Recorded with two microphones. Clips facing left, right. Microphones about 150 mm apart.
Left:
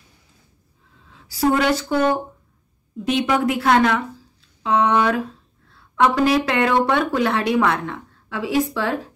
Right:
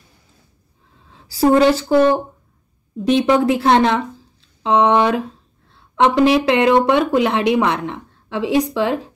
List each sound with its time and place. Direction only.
1.1 s a woman's voice: 30° right (ahead or behind)